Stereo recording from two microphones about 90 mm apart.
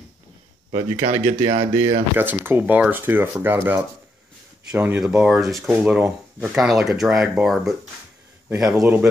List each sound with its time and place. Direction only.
0.7 s speech: 90° right
2.1 s speech: 25° right (ahead or behind)
5.0 s speech: 10° right (ahead or behind)
5.9 s speech: 15° right (ahead or behind)